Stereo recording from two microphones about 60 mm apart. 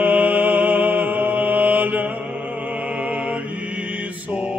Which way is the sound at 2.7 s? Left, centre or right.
Right.